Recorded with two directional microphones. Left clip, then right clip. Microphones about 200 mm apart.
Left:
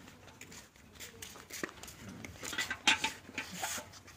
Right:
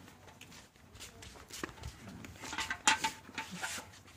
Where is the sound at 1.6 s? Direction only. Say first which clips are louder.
Left 2 dB; 25° left (ahead or behind).